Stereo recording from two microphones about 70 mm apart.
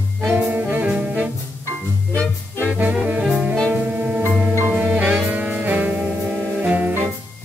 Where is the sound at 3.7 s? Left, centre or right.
Right.